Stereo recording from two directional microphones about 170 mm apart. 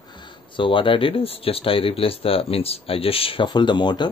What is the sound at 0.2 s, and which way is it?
Speech, 30° left (ahead or behind).